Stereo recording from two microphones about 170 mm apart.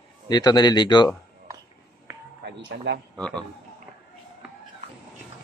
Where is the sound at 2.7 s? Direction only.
80° right.